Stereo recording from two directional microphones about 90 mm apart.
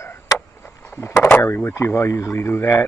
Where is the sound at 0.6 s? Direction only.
20° left (ahead or behind).